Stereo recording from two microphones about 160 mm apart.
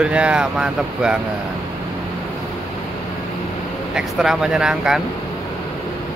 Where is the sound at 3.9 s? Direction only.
5° right (ahead or behind).